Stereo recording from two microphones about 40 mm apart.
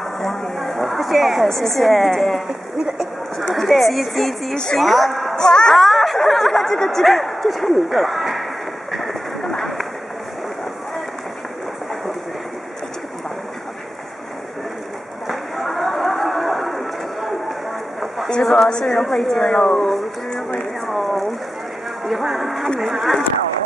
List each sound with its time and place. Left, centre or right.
0.2 s a sound: centre
1.5 s speech: centre
3.5 s speech: centre
5.3 s speech: centre
5.8 s speech: centre
9.0 s run: centre
15.2 s a sound: centre
18.4 s a woman's voice: centre
18.9 s a woman's voice: centre
20.8 s a sound: centre
22.0 s speech: centre